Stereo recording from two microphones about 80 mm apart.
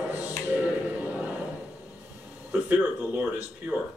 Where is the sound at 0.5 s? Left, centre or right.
Centre.